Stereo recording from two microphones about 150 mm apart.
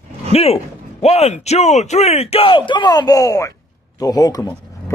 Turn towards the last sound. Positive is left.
turn(degrees=25)  # may be behind; listen again after turning